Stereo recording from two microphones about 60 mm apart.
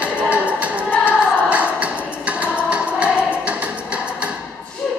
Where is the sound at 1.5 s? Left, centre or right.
Right.